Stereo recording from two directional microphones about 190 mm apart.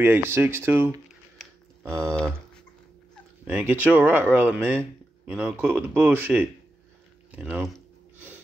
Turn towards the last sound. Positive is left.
turn(degrees=-5)  # may be behind; listen again after turning